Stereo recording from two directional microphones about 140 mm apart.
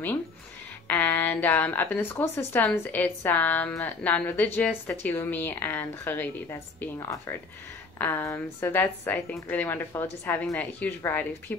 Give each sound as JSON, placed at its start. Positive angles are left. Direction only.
{"t": 0.8, "sound": "speech", "side_deg": 15}